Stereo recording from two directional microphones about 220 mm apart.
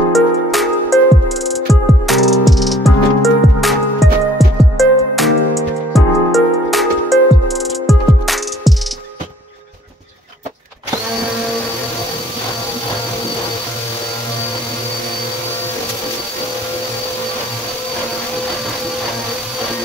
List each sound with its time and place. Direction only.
0.1 s music: centre (ahead or behind)